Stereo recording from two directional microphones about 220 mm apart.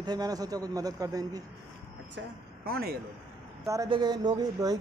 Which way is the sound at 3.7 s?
15° right (ahead or behind).